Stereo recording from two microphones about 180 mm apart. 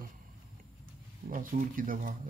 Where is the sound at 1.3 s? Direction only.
50° right (ahead or behind).